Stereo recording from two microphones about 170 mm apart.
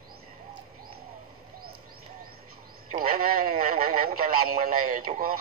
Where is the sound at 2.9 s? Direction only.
55° right (ahead or behind).